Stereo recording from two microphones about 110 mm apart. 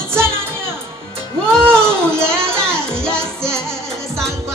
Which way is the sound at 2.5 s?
20° right (ahead or behind).